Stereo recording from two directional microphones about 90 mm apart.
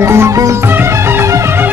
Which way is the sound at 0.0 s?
30° right (ahead or behind).